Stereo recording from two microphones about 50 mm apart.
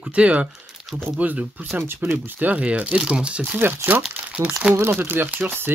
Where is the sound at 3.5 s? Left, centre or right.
Right.